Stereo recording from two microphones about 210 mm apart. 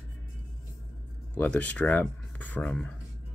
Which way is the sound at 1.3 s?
5° left (ahead or behind).